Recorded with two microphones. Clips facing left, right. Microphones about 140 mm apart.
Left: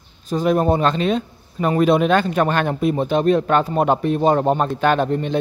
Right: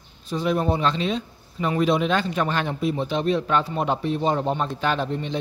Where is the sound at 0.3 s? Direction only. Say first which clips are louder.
Left 6 dB; 45° left (ahead or behind).